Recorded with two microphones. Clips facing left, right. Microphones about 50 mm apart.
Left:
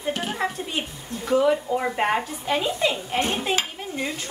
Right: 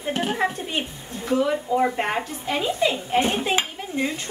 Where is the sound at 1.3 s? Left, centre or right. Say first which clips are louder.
Left 1 dB; centre.